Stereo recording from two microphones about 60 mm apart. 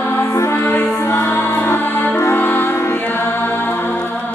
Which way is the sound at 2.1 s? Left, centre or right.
Left.